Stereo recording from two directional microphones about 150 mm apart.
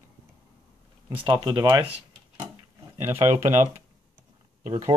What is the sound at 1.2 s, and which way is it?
Speech, 25° right (ahead or behind).